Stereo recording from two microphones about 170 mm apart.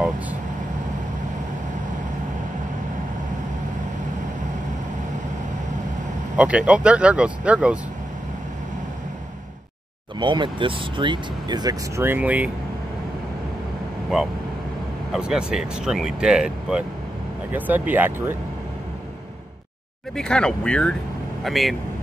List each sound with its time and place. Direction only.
6.3 s speech: 5° right (ahead or behind)
10.1 s speech: 25° right (ahead or behind)
12.0 s speech: 10° right (ahead or behind)
15.1 s speech: 5° right (ahead or behind)
20.2 s speech: 5° left (ahead or behind)